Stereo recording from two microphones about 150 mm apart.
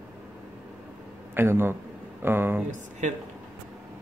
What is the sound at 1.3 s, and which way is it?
A man's voice, 15° right (ahead or behind).